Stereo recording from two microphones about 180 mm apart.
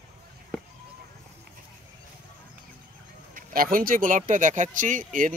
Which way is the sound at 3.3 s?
50° right (ahead or behind).